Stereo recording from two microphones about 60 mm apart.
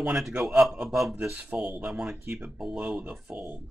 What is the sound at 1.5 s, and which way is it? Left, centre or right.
Speech, right.